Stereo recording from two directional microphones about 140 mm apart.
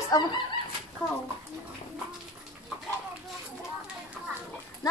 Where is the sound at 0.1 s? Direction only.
30° left (ahead or behind).